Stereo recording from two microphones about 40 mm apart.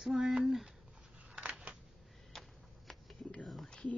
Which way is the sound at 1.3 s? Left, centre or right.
Right.